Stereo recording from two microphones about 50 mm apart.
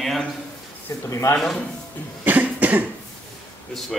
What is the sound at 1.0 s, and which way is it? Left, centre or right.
Speech, left.